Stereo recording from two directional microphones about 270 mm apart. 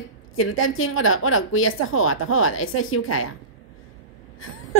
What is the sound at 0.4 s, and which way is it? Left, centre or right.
A woman's voice, left.